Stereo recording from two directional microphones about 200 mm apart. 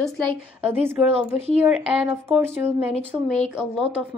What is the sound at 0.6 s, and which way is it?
Speech, 10° right (ahead or behind).